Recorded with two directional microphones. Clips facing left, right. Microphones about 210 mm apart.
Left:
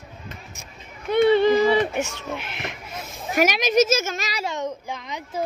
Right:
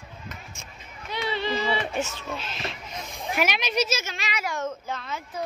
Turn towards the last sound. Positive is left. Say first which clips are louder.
# left 1 dB
turn(degrees=15)  # may be behind; listen again after turning